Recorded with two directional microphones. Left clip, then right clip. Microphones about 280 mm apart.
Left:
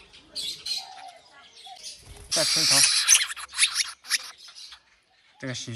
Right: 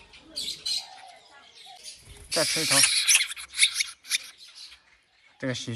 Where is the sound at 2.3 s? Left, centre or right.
Centre.